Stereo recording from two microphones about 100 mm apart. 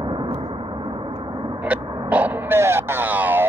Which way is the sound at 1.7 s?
15° right (ahead or behind).